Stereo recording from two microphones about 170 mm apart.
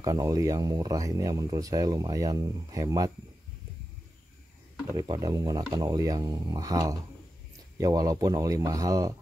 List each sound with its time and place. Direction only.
0.0 s speech: 20° right (ahead or behind)
4.9 s speech: 20° right (ahead or behind)